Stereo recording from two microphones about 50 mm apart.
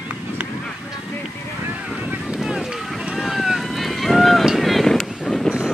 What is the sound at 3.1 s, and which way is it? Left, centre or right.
Run, centre.